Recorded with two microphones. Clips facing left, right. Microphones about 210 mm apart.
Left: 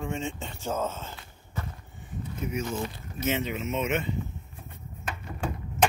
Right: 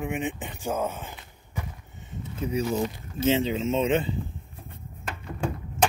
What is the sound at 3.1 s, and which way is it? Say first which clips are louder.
Speech: right 6 dB; 30° right (ahead or behind).